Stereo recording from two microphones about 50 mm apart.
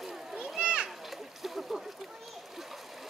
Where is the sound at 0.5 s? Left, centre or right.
Right.